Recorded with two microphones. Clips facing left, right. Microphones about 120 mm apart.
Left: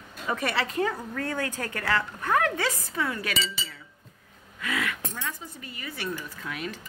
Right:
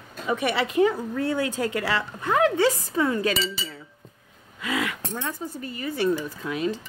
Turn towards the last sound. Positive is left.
turn(degrees=-25)  # may be behind; listen again after turning